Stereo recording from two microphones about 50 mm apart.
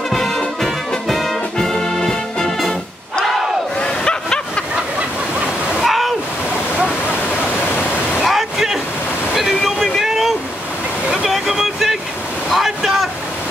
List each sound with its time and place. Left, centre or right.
0.1 s brass instrument: centre
3.8 s snicker: centre
5.8 s waterfall: centre
8.2 s a sound: centre
9.3 s waterfall: centre
11.1 s boat: centre
12.4 s waves: centre